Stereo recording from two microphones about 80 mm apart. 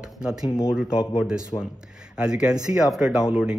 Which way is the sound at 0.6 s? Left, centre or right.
Left.